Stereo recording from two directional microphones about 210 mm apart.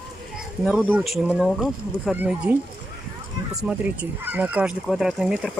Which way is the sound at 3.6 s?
10° right (ahead or behind).